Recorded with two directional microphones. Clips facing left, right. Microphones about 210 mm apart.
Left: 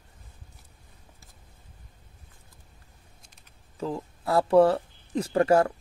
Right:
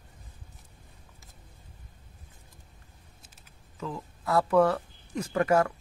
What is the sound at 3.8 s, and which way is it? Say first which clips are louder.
Speech: left 5 dB; 30° left (ahead or behind).